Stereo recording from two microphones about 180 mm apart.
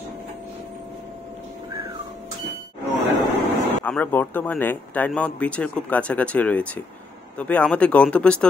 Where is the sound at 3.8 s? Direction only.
10° left (ahead or behind).